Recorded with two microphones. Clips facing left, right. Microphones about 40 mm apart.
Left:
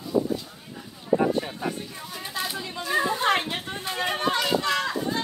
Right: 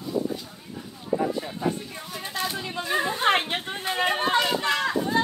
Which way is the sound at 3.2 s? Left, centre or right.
Right.